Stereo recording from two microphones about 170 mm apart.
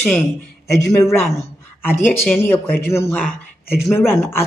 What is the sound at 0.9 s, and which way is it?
Speech, 15° left (ahead or behind).